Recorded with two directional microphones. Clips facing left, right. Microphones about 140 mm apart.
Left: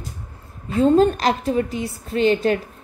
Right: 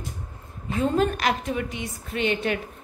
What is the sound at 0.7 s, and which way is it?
A woman's voice, 30° left (ahead or behind).